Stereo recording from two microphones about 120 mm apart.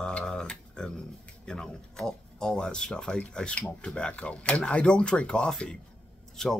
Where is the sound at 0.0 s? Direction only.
5° left (ahead or behind).